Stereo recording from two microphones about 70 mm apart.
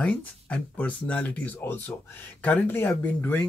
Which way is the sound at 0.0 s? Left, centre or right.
Left.